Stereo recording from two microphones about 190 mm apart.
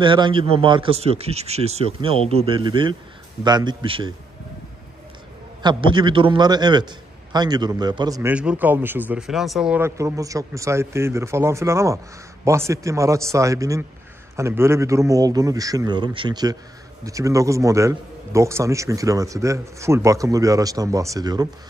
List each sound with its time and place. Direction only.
0.0 s speech: 25° right (ahead or behind)
5.6 s a man's voice: 25° right (ahead or behind)